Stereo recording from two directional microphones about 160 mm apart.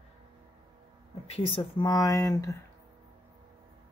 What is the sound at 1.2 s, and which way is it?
Speech, 40° left (ahead or behind).